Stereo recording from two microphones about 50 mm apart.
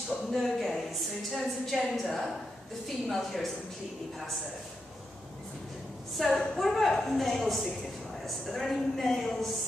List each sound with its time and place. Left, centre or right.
0.3 s a woman's voice: centre
6.1 s a woman's voice: centre